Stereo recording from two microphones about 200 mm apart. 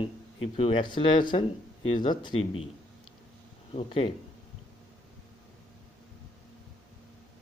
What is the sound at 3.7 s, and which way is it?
Speech, 30° left (ahead or behind).